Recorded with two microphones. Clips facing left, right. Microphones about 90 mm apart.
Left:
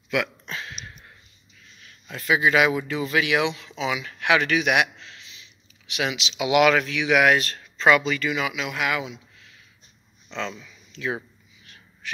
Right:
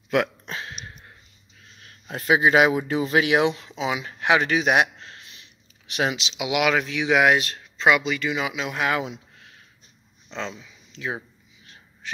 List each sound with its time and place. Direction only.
0.1 s a sound: 40° right (ahead or behind)
1.6 s speech: 45° right (ahead or behind)
5.9 s speech: 35° right (ahead or behind)
6.4 s speech: 10° right (ahead or behind); by 9.1 s 35° right (ahead or behind)
9.1 s a sound: 50° right (ahead or behind)
10.3 s speech: 5° right (ahead or behind)
10.6 s speech: 15° right (ahead or behind)
11.6 s gasp: 25° right (ahead or behind)